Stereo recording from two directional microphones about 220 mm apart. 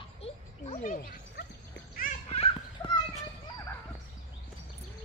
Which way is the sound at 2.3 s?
25° left (ahead or behind).